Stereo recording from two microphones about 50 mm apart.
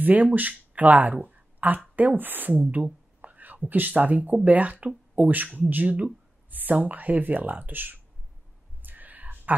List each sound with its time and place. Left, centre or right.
0.0 s a woman's voice: right
8.8 s whispering: right